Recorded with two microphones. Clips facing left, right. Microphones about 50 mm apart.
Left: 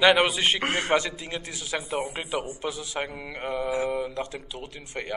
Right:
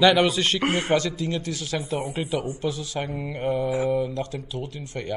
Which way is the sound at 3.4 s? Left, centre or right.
Left.